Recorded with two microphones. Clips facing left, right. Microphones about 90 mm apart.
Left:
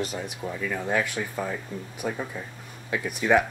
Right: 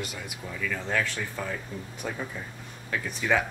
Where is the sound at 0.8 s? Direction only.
15° left (ahead or behind).